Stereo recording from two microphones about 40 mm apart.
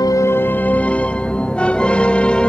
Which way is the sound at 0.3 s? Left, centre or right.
Left.